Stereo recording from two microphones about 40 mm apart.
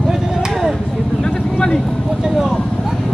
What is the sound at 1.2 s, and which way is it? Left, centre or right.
Vehicle, centre.